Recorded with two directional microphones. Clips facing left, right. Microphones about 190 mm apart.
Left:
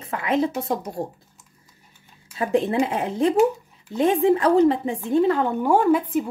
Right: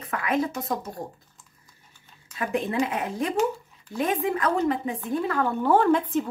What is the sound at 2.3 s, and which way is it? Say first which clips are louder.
A woman's voice: left 5 dB; 30° left (ahead or behind).